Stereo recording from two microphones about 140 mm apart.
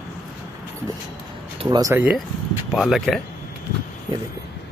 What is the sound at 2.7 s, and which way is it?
Speech, centre (ahead or behind).